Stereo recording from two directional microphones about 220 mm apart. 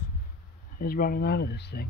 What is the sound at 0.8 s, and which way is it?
Speech, 40° left (ahead or behind).